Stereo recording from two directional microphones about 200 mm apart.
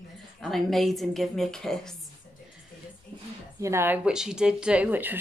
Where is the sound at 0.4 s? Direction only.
Centre (ahead or behind).